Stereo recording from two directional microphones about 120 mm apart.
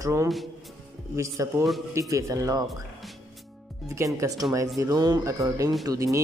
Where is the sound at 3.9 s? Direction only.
25° right (ahead or behind).